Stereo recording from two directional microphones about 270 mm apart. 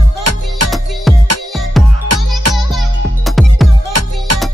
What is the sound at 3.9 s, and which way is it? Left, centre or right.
Music, right.